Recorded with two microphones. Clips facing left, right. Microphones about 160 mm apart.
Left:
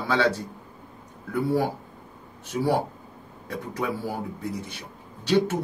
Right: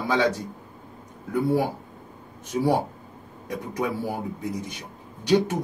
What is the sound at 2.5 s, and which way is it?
Speech, 15° right (ahead or behind).